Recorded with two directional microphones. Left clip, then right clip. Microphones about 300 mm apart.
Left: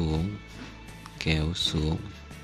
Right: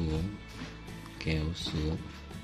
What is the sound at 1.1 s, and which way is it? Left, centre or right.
Speech, centre.